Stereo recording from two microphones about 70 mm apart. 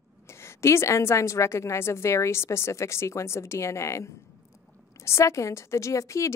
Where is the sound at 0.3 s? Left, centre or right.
Left.